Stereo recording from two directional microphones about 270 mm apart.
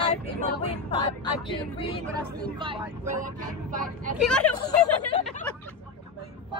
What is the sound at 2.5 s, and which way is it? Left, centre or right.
Speech, centre.